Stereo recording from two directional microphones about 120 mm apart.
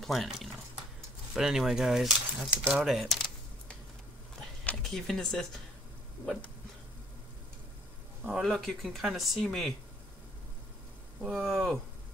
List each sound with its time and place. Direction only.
0.0 s speech: centre (ahead or behind)
4.4 s a sound: 5° left (ahead or behind)
8.3 s speech: centre (ahead or behind)
11.1 s speech: centre (ahead or behind)